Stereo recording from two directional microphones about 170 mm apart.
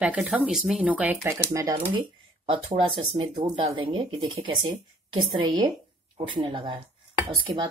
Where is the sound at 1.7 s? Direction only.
30° right (ahead or behind).